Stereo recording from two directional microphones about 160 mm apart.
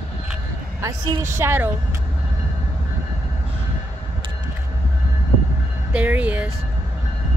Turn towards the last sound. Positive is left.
turn(degrees=-10)  # may be behind; listen again after turning